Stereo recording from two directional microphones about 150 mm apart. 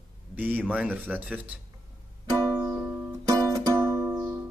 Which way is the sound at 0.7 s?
10° right (ahead or behind).